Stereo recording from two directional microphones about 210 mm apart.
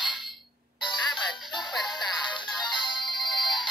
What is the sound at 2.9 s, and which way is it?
Music, 20° left (ahead or behind).